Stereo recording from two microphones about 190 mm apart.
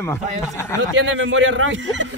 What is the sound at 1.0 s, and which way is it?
Speech, 85° right.